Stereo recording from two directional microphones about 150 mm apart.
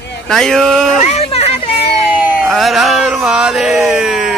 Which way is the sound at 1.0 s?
45° left (ahead or behind).